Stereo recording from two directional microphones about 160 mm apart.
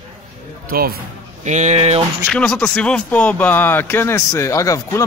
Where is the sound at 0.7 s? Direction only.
70° right (ahead or behind).